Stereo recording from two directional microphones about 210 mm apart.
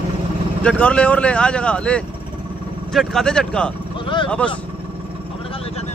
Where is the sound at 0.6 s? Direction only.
5° left (ahead or behind).